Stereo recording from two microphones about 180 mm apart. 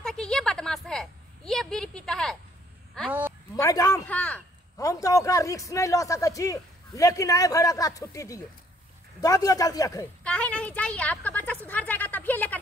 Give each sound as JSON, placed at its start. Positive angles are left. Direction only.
{"t": 0.0, "sound": "a sound", "side_deg": 5}
{"t": 3.1, "sound": "speech", "side_deg": -10}
{"t": 3.5, "sound": "a man's voice", "side_deg": 20}
{"t": 4.1, "sound": "a man's voice", "side_deg": 10}
{"t": 4.7, "sound": "a man's voice", "side_deg": 20}
{"t": 10.2, "sound": "a man's voice", "side_deg": 5}